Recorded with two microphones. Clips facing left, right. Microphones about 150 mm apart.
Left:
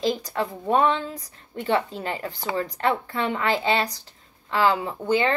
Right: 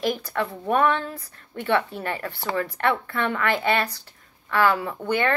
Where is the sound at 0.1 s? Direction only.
20° left (ahead or behind).